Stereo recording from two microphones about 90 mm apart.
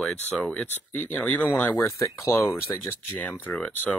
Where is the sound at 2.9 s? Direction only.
20° left (ahead or behind).